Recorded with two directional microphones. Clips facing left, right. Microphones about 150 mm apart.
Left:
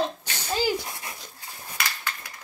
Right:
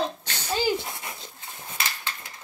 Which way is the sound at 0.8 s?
25° right (ahead or behind).